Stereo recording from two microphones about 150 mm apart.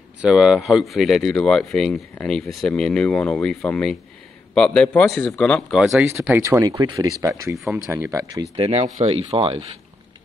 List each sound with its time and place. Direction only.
0.2 s a man's voice: 5° right (ahead or behind)
5.8 s speech: 5° right (ahead or behind)
6.0 s speech: 15° right (ahead or behind)
7.5 s speech: centre (ahead or behind)
7.8 s speech: 20° right (ahead or behind)
8.5 s speech: 45° right (ahead or behind)